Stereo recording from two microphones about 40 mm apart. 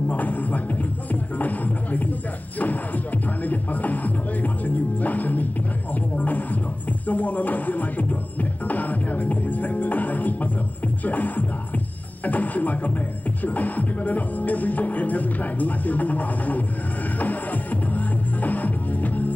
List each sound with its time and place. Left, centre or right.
0.1 s music: left
1.4 s speech: left
3.4 s music: left
6.1 s a sound: left
7.1 s music: left